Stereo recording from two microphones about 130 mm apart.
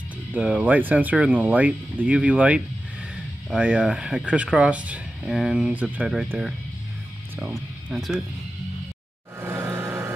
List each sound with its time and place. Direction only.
0.3 s speech: 10° right (ahead or behind)
7.3 s speech: 5° right (ahead or behind)
9.4 s vehicle: 20° right (ahead or behind)